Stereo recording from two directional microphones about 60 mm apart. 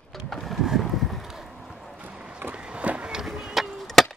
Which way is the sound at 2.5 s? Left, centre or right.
Centre.